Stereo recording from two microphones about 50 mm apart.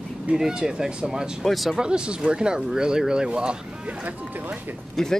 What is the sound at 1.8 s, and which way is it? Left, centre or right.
Speech, centre.